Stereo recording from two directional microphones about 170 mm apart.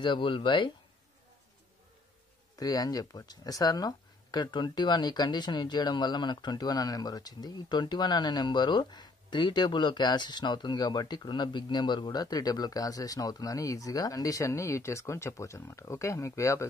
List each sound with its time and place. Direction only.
0.0 s speech: 30° left (ahead or behind)
2.5 s speech: 20° left (ahead or behind)